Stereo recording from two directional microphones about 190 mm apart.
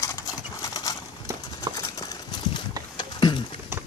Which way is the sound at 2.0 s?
20° left (ahead or behind).